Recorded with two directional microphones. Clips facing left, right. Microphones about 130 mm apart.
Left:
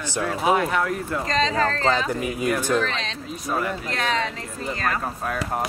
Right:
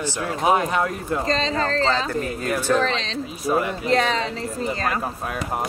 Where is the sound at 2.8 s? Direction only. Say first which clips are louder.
Right 4 dB; 30° right (ahead or behind).